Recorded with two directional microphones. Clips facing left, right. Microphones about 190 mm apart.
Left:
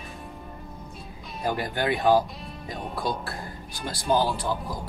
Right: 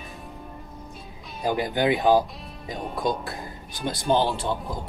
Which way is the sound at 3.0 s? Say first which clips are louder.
Right 4 dB; 20° right (ahead or behind).